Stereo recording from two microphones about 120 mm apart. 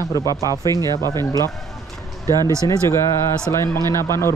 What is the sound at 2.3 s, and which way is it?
Speech, 30° right (ahead or behind).